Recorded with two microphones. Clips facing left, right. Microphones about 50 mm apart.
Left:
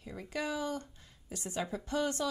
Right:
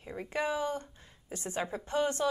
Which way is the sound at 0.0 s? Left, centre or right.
Right.